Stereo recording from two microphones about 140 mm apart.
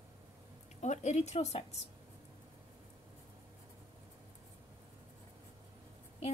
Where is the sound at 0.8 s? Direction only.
55° left (ahead or behind).